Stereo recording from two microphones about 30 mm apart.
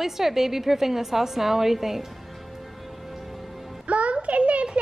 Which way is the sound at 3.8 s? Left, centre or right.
Right.